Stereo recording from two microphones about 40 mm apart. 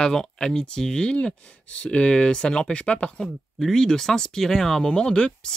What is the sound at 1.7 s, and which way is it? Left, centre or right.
Speech, left.